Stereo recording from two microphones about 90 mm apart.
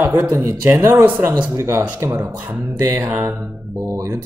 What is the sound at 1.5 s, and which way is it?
Speech, 30° right (ahead or behind).